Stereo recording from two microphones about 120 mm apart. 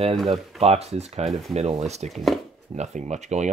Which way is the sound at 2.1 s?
Centre (ahead or behind).